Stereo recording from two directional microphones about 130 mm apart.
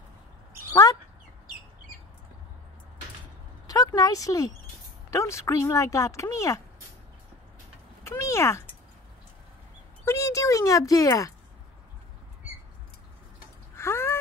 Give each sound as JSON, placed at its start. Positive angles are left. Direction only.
{"t": 3.6, "sound": "speech", "side_deg": 30}
{"t": 8.0, "sound": "speech", "side_deg": 20}
{"t": 10.0, "sound": "speech", "side_deg": 25}
{"t": 13.7, "sound": "a sound", "side_deg": 20}